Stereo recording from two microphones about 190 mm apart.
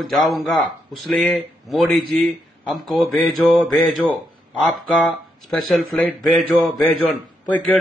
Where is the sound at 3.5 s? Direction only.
5° left (ahead or behind).